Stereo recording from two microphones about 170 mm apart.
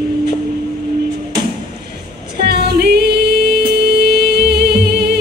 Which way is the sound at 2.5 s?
70° right (ahead or behind).